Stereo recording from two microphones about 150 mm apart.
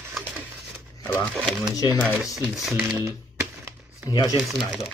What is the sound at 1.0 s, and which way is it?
Speech, 10° left (ahead or behind).